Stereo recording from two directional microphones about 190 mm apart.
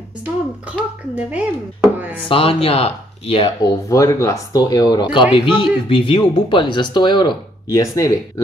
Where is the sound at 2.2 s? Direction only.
30° left (ahead or behind).